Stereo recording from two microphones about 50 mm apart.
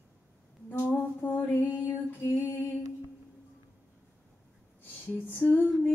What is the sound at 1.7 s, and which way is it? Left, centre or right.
Music, left.